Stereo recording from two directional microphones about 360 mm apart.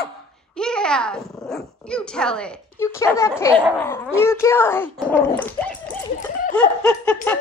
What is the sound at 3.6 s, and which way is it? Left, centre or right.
Speech, centre.